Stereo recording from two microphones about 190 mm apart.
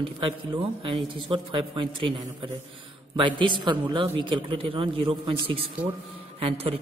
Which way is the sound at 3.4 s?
25° right (ahead or behind).